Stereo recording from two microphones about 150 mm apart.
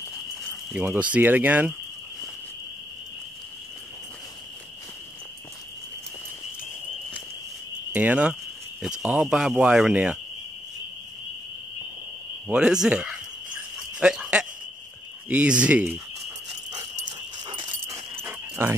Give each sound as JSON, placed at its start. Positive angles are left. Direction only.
{"t": 0.7, "sound": "speech", "side_deg": -5}
{"t": 7.9, "sound": "speech", "side_deg": -10}
{"t": 12.4, "sound": "speech", "side_deg": -5}
{"t": 13.9, "sound": "a sound", "side_deg": -5}
{"t": 15.2, "sound": "speech", "side_deg": -5}
{"t": 16.7, "sound": "dog", "side_deg": -30}
{"t": 18.1, "sound": "a sound", "side_deg": -15}